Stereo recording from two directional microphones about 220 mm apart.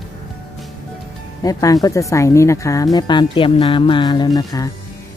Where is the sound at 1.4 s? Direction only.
15° left (ahead or behind).